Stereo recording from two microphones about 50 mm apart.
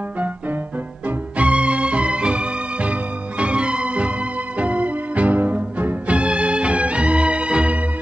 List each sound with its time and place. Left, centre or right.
1.0 s music: right